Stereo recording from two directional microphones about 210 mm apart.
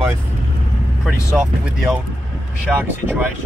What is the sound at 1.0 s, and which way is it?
Speech, 5° right (ahead or behind).